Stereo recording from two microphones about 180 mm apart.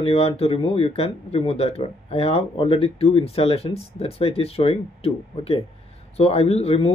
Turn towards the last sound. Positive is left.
turn(degrees=35)  # may be behind; listen again after turning